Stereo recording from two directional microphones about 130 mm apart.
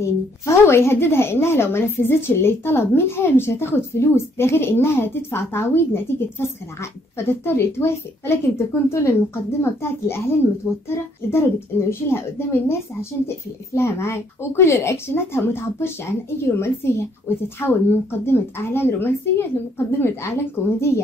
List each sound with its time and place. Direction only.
0.0 s a woman's voice: 20° left (ahead or behind)
13.7 s a woman's voice: 20° left (ahead or behind)